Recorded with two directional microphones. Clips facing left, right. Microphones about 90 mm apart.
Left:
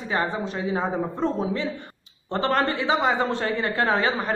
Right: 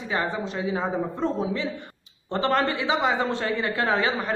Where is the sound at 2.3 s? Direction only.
40° left (ahead or behind).